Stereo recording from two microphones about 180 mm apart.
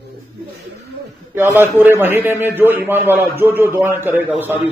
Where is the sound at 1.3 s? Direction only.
10° right (ahead or behind).